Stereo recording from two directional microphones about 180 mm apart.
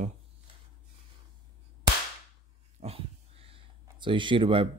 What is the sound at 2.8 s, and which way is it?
Dog, 35° right (ahead or behind).